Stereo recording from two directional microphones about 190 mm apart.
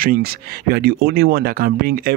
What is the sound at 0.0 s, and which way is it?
Speech, 50° right (ahead or behind).